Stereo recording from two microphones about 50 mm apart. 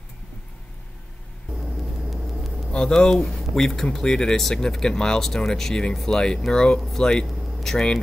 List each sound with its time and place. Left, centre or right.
2.7 s speech: centre